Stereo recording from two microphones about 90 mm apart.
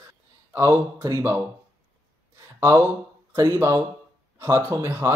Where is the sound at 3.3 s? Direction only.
35° right (ahead or behind).